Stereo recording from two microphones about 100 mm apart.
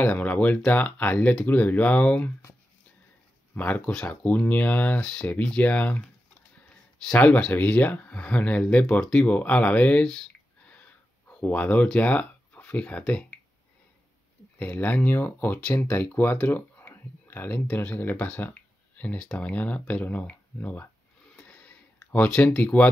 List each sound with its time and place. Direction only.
0.0 s speech: 15° left (ahead or behind)
3.5 s speech: 15° left (ahead or behind)
7.1 s speech: 10° left (ahead or behind)
10.7 s a sound: 15° left (ahead or behind)
14.6 s speech: 15° left (ahead or behind)
21.4 s a sound: 15° left (ahead or behind)